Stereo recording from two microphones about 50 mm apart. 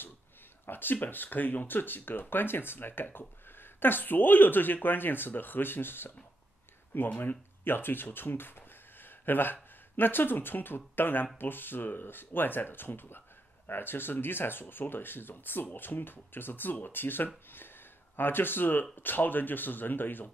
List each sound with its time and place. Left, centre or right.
0.7 s speech: left